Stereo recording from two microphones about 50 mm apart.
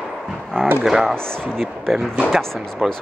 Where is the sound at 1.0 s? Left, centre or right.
Centre.